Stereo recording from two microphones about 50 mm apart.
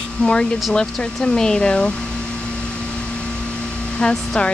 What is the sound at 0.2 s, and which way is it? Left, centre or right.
Speech, left.